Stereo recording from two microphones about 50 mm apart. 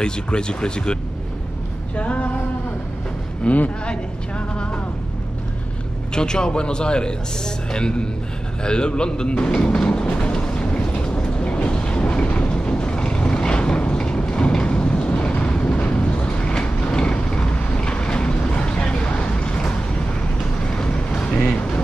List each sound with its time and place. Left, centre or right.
0.0 s a man's voice: centre
2.0 s a sound: left
3.4 s a man's voice: left
6.1 s a man's voice: centre
10.1 s train: centre
20.6 s vehicle: centre